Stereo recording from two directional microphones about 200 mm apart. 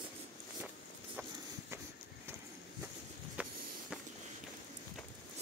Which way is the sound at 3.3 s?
5° right (ahead or behind).